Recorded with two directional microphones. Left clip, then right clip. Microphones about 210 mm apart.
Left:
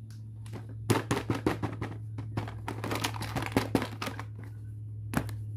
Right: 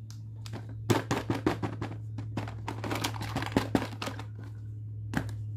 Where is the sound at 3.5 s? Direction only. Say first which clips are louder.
Even; 10° left (ahead or behind).